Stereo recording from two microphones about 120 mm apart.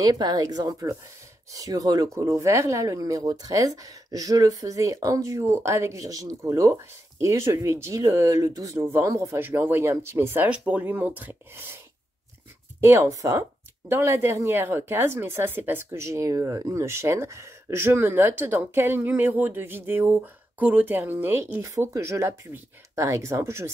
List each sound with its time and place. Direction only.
0.0 s speech: 35° right (ahead or behind)
12.8 s speech: 25° right (ahead or behind)